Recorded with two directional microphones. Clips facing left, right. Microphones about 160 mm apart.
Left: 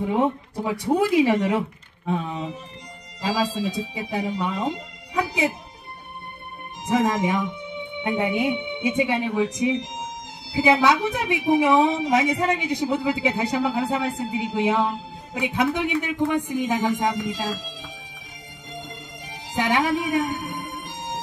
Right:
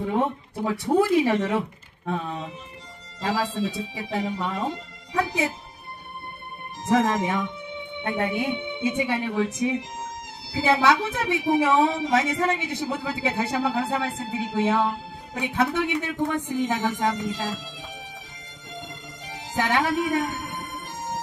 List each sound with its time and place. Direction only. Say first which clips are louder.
0.0 s a sound: left 2 dB; 15° left (ahead or behind)
0.7 s a woman's voice: even; 15° left (ahead or behind)
6.9 s a woman's voice: left 1 dB; 15° left (ahead or behind)
19.5 s a woman's voice: left 1 dB; 15° left (ahead or behind)